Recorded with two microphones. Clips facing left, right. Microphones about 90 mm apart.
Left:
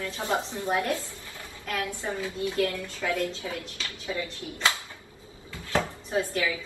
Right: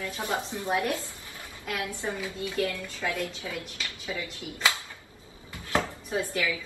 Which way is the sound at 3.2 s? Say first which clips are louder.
Left 3 dB; 30° left (ahead or behind).